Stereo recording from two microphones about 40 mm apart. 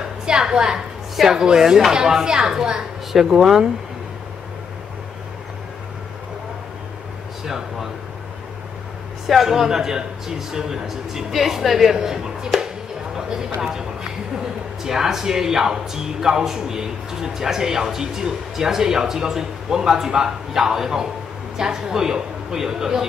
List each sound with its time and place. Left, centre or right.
0.2 s a woman's voice: centre
7.4 s speech: centre
9.3 s speech: centre